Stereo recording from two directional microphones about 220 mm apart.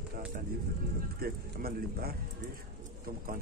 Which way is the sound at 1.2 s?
45° right (ahead or behind).